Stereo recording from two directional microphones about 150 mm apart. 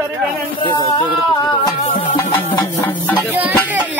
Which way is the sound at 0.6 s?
35° left (ahead or behind).